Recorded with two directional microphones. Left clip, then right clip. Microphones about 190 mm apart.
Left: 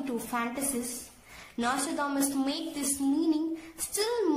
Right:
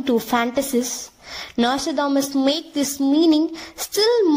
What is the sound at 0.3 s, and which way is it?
A woman's voice, 40° right (ahead or behind).